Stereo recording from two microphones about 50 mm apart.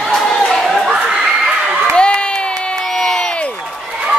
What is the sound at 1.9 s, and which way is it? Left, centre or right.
Crowd, centre.